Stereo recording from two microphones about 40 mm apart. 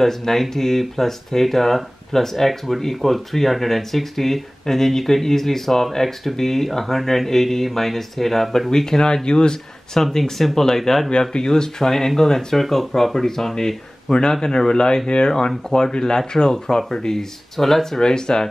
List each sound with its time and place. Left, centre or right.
0.0 s speech: centre
9.9 s speech: centre
11.1 s speech: left